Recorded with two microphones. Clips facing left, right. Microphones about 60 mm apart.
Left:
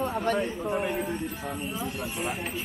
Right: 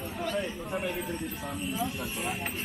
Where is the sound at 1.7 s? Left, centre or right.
Centre.